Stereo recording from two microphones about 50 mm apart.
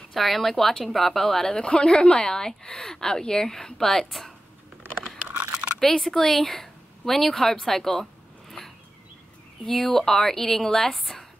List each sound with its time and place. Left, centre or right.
0.1 s a woman's voice: centre
5.3 s typing: right
5.9 s a woman's voice: centre